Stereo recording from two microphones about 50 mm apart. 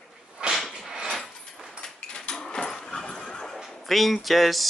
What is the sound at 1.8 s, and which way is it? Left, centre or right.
Dog, centre.